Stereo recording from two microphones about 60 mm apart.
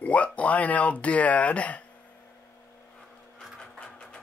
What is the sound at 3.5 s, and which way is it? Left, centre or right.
Sewing machine, centre.